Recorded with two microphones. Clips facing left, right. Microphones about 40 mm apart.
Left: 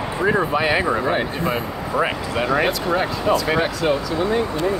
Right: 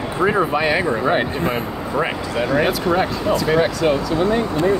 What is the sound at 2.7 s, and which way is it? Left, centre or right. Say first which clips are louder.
Speech: right 2 dB; centre.